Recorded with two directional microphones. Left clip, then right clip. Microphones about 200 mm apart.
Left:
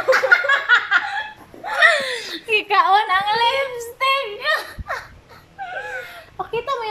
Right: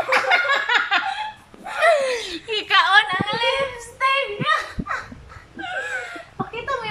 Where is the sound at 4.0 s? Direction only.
20° left (ahead or behind).